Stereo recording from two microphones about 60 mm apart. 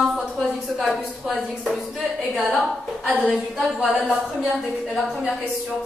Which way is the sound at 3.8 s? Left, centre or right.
Centre.